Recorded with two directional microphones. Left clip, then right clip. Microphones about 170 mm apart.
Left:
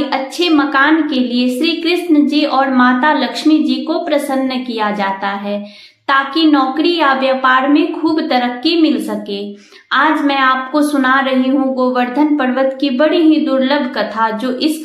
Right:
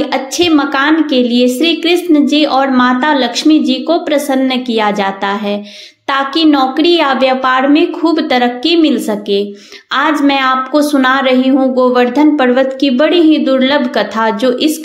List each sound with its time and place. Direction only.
0.1 s a woman's voice: 40° right (ahead or behind)